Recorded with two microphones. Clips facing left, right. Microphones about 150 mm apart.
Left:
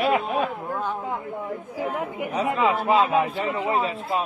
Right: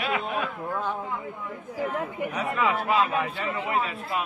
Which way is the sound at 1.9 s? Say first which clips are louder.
Left 3 dB; 25° left (ahead or behind).